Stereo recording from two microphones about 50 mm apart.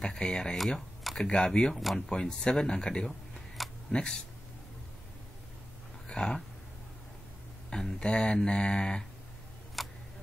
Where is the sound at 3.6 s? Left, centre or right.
Centre.